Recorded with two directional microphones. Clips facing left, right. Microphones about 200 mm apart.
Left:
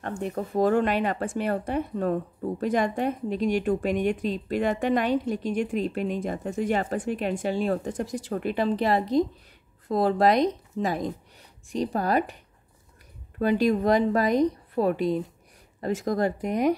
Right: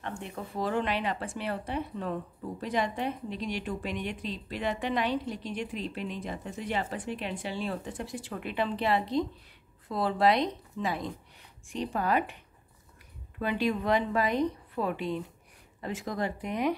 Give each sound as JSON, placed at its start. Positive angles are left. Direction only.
{"t": 0.2, "sound": "a woman's voice", "side_deg": 45}
{"t": 13.4, "sound": "a woman's voice", "side_deg": 40}